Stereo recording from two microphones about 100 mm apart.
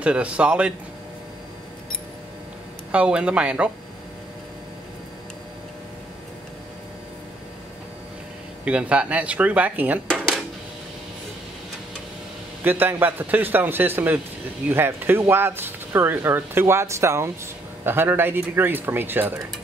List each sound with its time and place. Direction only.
0.0 s speech: 10° right (ahead or behind)
2.9 s speech: 10° right (ahead or behind)
8.6 s speech: 10° right (ahead or behind)
12.6 s speech: 20° right (ahead or behind)